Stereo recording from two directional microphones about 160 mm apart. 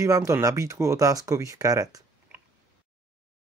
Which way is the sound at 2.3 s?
15° right (ahead or behind).